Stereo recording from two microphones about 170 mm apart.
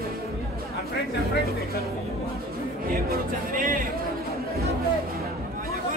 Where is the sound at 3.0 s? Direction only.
55° right (ahead or behind).